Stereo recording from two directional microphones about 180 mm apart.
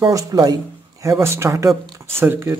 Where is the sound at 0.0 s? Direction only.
20° right (ahead or behind).